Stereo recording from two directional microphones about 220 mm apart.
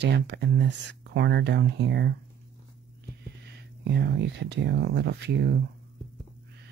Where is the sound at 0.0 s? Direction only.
50° right (ahead or behind).